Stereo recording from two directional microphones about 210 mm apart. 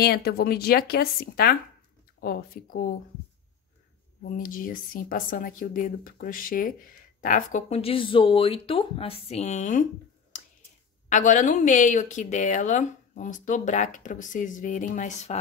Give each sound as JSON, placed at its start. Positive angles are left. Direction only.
{"t": 0.0, "sound": "speech", "side_deg": 50}
{"t": 4.2, "sound": "a woman's voice", "side_deg": 40}
{"t": 11.1, "sound": "a woman's voice", "side_deg": 35}